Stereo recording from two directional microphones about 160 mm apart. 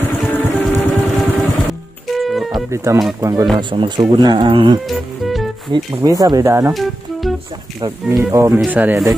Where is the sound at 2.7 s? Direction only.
20° right (ahead or behind).